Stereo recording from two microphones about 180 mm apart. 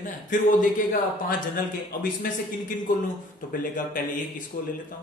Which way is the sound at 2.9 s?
50° left (ahead or behind).